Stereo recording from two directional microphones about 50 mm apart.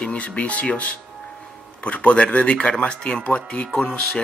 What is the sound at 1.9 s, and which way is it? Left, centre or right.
Speech, left.